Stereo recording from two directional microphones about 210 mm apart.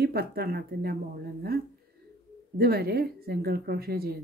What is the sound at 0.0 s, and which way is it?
Speech, 50° right (ahead or behind).